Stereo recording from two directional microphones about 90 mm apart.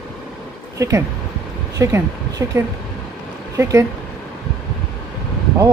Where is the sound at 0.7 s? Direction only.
35° right (ahead or behind).